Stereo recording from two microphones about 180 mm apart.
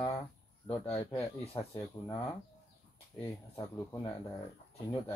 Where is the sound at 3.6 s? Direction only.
15° left (ahead or behind).